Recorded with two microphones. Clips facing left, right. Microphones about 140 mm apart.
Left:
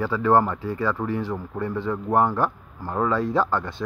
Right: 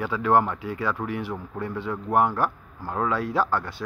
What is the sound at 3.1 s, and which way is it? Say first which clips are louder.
Speech: left 2 dB; 10° right (ahead or behind).